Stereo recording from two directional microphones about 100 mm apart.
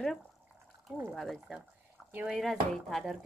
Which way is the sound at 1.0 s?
5° left (ahead or behind).